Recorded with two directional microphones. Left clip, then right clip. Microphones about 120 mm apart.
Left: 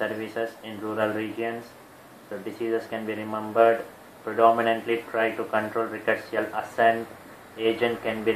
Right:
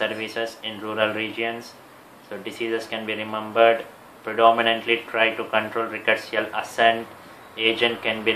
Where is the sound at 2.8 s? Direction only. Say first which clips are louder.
Right 3 dB; 25° left (ahead or behind).